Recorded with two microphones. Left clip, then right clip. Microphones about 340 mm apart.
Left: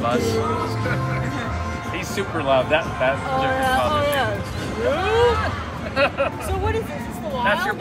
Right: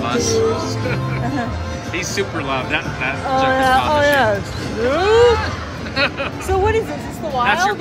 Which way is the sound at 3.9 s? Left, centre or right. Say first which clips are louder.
Right 7 dB; right.